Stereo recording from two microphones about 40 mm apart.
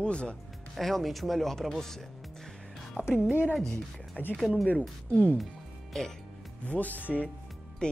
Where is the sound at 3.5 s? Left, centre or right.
Centre.